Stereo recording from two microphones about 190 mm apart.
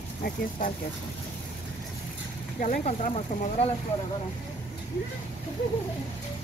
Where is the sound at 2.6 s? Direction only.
40° left (ahead or behind).